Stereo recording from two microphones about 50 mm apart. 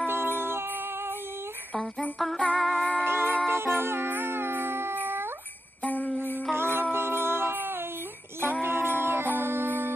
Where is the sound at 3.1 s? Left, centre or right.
Right.